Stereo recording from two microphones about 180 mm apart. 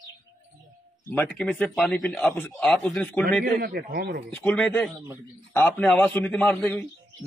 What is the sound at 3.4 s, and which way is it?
Speech, 60° right (ahead or behind).